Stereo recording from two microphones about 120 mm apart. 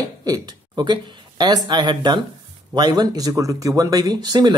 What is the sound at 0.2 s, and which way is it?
Speech, 35° right (ahead or behind).